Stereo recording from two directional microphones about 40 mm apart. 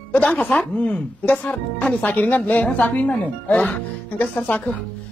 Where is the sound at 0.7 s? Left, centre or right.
Left.